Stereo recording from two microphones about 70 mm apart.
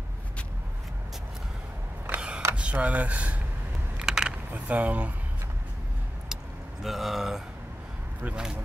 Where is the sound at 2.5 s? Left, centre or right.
Centre.